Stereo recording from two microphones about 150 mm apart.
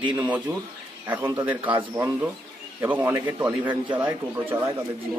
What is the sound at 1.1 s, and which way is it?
Speech, 15° right (ahead or behind).